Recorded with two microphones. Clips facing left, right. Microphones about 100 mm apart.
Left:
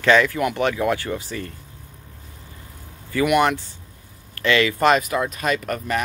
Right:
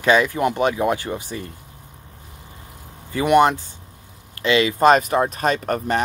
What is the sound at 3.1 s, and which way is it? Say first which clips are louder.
Speech: right 3 dB; 25° right (ahead or behind).